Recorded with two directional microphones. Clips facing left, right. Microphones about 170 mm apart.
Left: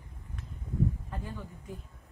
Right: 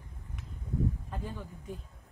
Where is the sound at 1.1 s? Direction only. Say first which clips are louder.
Right 1 dB; 15° right (ahead or behind).